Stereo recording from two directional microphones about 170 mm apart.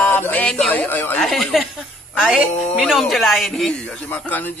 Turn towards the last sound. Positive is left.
turn(degrees=10)  # may be behind; listen again after turning